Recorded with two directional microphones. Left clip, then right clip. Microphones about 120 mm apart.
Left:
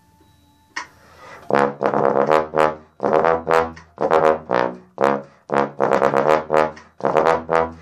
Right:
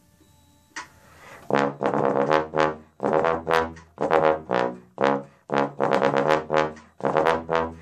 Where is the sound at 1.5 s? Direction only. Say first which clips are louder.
Left 5 dB; 25° right (ahead or behind).